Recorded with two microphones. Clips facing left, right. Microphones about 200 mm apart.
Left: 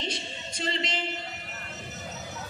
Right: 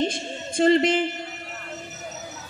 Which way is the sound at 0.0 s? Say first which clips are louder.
Right 9 dB; 50° right (ahead or behind).